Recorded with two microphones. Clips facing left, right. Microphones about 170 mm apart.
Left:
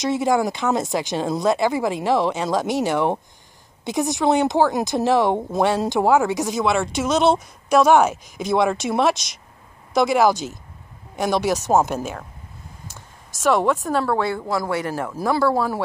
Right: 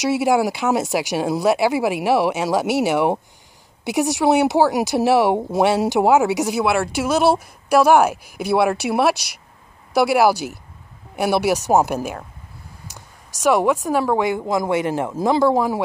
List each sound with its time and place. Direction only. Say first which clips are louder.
0.2 s speech: right 2 dB; 10° right (ahead or behind)
4.2 s speech: right 2 dB; 10° right (ahead or behind)
12.8 s a sound: even; 15° right (ahead or behind)
13.8 s speech: right 2 dB; 15° right (ahead or behind)